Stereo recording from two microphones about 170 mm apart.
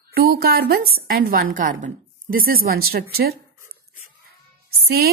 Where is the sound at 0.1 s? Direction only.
65° right (ahead or behind).